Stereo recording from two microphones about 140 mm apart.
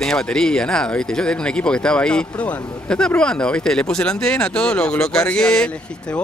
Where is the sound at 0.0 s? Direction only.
5° left (ahead or behind).